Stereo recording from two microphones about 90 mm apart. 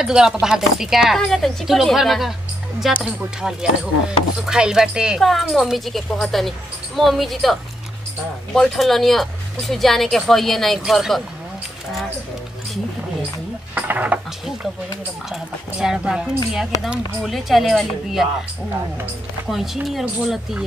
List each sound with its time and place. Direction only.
0.0 s speech: 5° right (ahead or behind)
8.5 s speech: 5° left (ahead or behind)
13.7 s speech: 15° right (ahead or behind)
15.8 s speech: 5° right (ahead or behind)
19.5 s speech: 5° right (ahead or behind)